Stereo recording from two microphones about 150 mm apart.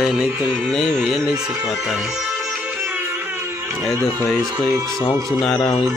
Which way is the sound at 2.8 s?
15° right (ahead or behind).